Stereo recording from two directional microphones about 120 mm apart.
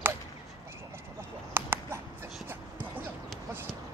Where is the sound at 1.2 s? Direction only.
20° right (ahead or behind).